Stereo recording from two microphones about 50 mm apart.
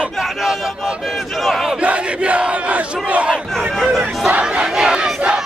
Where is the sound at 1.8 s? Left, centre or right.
Right.